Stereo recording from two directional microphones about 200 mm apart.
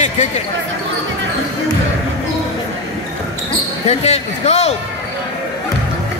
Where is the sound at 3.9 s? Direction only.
35° left (ahead or behind).